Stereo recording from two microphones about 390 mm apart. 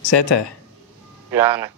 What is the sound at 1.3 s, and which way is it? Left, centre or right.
Speech, centre.